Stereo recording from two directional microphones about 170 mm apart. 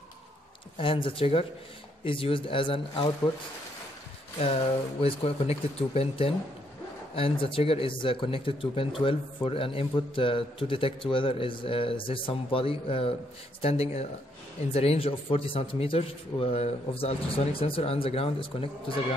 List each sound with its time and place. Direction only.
0.7 s a man's voice: 30° left (ahead or behind)
5.0 s a man's voice: 35° left (ahead or behind)